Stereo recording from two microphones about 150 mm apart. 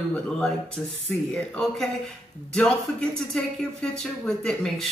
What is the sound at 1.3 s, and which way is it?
Speech, centre (ahead or behind).